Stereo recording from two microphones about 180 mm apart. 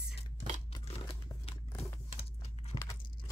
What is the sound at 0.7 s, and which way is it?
Tearing, 30° left (ahead or behind).